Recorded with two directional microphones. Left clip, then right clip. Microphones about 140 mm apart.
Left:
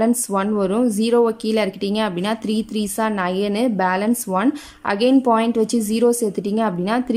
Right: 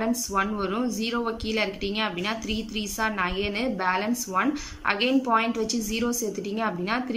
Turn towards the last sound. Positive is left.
turn(degrees=45)  # may be behind; listen again after turning